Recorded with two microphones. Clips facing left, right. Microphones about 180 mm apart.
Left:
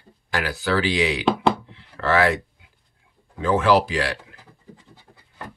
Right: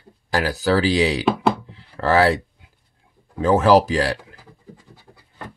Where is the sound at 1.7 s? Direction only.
40° right (ahead or behind).